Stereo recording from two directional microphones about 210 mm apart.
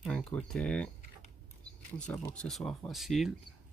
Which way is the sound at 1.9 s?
5° left (ahead or behind).